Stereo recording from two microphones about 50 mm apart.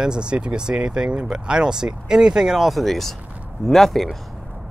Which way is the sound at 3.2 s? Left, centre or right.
Right.